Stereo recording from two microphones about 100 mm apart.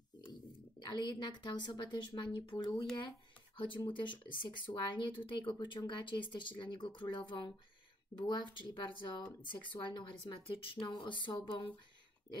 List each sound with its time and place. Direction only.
0.3 s a woman's voice: 45° left (ahead or behind)
3.5 s speech: 55° left (ahead or behind)
10.9 s speech: 50° left (ahead or behind)